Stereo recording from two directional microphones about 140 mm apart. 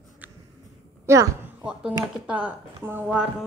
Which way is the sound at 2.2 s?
10° right (ahead or behind).